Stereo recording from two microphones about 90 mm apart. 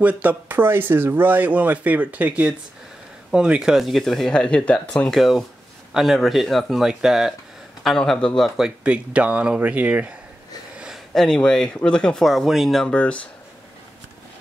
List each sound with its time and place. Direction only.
0.0 s speech: 15° right (ahead or behind); by 8.3 s 5° left (ahead or behind)
8.4 s speech: 5° right (ahead or behind)
10.8 s a sound: 5° right (ahead or behind)
11.2 s speech: 5° left (ahead or behind)
12.9 s speech: 15° left (ahead or behind)